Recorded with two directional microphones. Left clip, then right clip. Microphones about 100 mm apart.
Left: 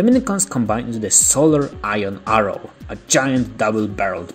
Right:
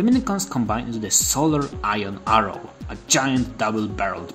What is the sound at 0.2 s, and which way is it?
Speech, 35° left (ahead or behind).